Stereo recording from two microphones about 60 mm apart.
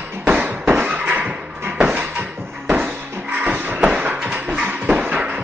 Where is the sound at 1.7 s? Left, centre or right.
Right.